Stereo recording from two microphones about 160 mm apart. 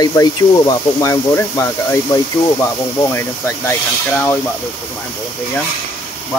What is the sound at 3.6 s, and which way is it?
Speech, 15° left (ahead or behind).